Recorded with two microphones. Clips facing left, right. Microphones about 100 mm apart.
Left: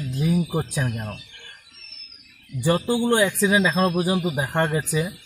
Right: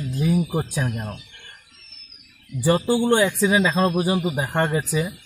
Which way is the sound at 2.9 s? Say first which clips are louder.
Right 2 dB; 30° right (ahead or behind).